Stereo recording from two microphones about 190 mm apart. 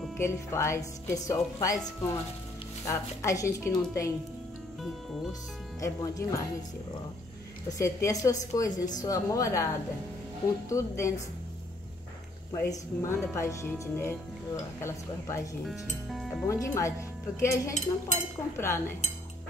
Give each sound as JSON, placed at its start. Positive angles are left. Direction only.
{"t": 0.2, "sound": "speech", "side_deg": 15}
{"t": 2.9, "sound": "speech", "side_deg": 15}
{"t": 5.8, "sound": "speech", "side_deg": 15}
{"t": 7.7, "sound": "speech", "side_deg": 15}
{"t": 10.7, "sound": "speech", "side_deg": 15}
{"t": 12.6, "sound": "speech", "side_deg": 10}
{"t": 15.6, "sound": "speech", "side_deg": 0}
{"t": 16.4, "sound": "speech", "side_deg": 15}
{"t": 17.7, "sound": "speech", "side_deg": 40}
{"t": 18.6, "sound": "speech", "side_deg": 15}